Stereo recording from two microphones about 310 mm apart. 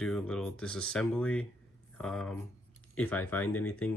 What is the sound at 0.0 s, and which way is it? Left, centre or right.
Speech, centre.